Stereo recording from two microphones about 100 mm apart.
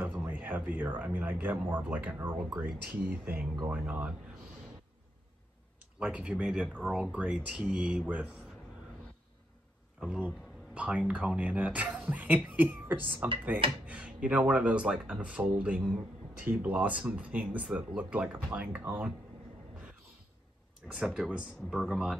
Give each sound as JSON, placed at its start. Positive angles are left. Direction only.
{"t": 0.0, "sound": "speech", "side_deg": -20}
{"t": 5.9, "sound": "speech", "side_deg": -10}
{"t": 9.9, "sound": "speech", "side_deg": -10}
{"t": 20.9, "sound": "speech", "side_deg": -5}